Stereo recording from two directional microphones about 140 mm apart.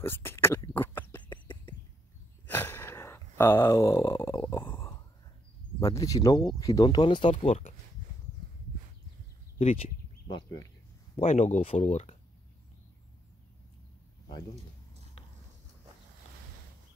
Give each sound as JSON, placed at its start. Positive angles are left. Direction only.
{"t": 0.0, "sound": "whispering", "side_deg": 15}
{"t": 2.4, "sound": "gasp", "side_deg": 15}
{"t": 3.6, "sound": "speech", "side_deg": 25}
{"t": 4.3, "sound": "stomach rumble", "side_deg": 35}
{"t": 4.7, "sound": "a sound", "side_deg": 20}
{"t": 5.9, "sound": "speech", "side_deg": 25}
{"t": 7.2, "sound": "speech", "side_deg": 50}
{"t": 9.6, "sound": "speech", "side_deg": 45}
{"t": 11.1, "sound": "speech", "side_deg": 55}